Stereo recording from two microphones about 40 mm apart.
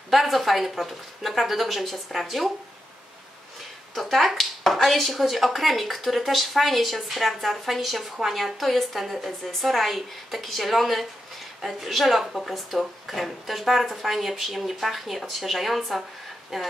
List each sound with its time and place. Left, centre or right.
0.1 s speech: centre
3.9 s speech: centre